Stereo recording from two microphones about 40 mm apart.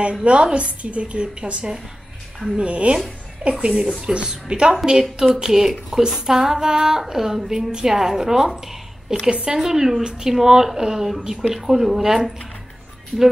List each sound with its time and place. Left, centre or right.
0.0 s a woman's voice: right; by 8.6 s centre
9.3 s a woman's voice: right
9.6 s speech: centre
13.1 s speech: centre